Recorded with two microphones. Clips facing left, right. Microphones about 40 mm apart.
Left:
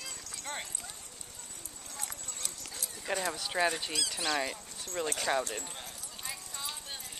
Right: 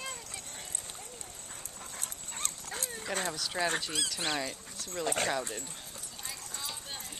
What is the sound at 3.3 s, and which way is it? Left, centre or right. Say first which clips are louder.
Speech: left 2 dB; centre.